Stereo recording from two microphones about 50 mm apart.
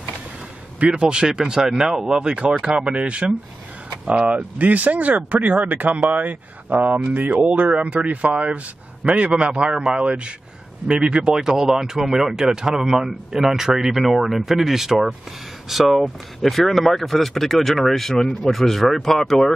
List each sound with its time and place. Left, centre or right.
0.7 s a man's voice: right; by 19.3 s centre